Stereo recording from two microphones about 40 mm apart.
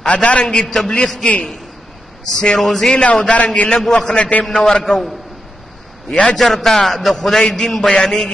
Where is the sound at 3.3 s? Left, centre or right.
Left.